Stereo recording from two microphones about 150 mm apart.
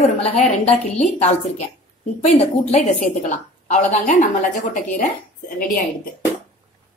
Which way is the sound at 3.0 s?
55° left (ahead or behind).